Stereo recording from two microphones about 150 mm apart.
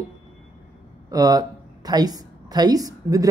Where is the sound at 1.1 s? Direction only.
25° right (ahead or behind).